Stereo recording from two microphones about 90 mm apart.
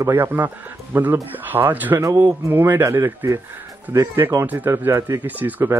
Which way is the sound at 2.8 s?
35° right (ahead or behind).